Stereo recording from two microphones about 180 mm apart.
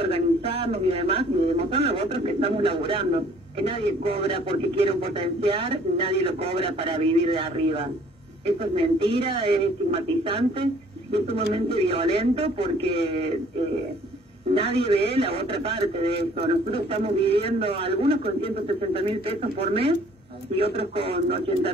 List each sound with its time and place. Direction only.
0.0 s speech: 30° right (ahead or behind)
14.5 s speech: 30° right (ahead or behind)